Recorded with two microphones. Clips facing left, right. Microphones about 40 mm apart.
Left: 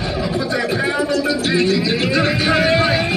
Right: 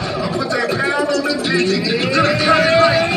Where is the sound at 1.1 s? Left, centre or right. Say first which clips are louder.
Even; left.